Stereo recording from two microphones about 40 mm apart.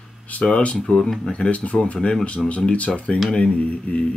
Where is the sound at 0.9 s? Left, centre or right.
Left.